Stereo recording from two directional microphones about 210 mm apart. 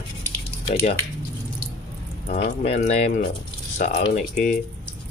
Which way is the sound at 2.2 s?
30° left (ahead or behind).